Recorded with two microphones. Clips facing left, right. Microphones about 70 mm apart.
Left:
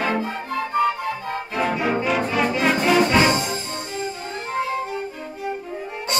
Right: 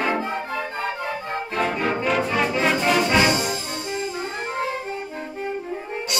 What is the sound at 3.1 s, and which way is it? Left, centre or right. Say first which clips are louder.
Music: left 1 dB; left.